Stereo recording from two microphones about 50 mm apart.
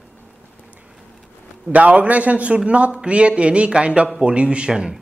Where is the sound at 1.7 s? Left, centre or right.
Right; by 4.9 s centre.